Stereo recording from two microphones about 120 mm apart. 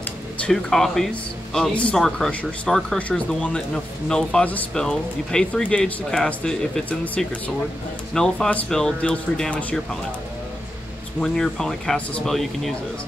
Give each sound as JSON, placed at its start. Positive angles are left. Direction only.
{"t": 0.4, "sound": "speech", "side_deg": 5}
{"t": 11.1, "sound": "speech", "side_deg": 5}